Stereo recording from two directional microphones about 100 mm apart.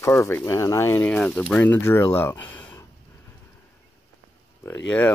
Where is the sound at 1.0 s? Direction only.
15° left (ahead or behind).